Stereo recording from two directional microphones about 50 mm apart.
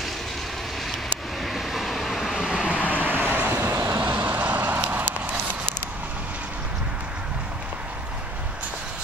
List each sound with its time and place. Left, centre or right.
1.4 s vehicle: centre
2.3 s vehicle: centre
2.9 s vehicle: right
3.7 s vehicle: right
4.0 s vehicle: right